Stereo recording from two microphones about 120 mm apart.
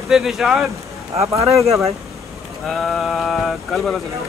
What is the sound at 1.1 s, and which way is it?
Speech, 25° right (ahead or behind).